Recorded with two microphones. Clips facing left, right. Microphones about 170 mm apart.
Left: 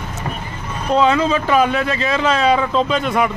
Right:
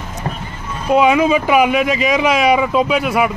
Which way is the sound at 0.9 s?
15° right (ahead or behind).